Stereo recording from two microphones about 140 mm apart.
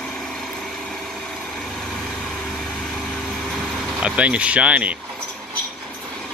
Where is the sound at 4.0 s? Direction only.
10° right (ahead or behind).